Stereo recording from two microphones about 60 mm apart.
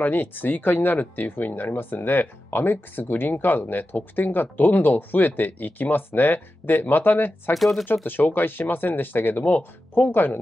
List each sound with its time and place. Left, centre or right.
0.0 s speech: left
7.5 s speech: centre
7.8 s speech: left